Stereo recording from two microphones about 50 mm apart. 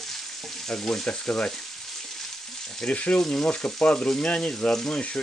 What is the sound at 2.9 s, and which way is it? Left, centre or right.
Speech, left.